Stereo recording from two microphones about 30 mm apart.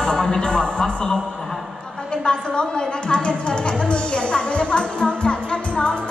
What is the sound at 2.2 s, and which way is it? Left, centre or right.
A woman's voice, left.